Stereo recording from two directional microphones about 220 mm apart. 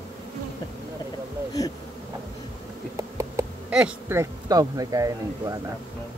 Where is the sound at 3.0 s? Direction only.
15° right (ahead or behind).